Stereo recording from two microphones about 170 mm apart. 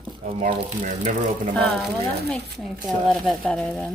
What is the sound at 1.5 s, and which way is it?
Speech, 5° left (ahead or behind).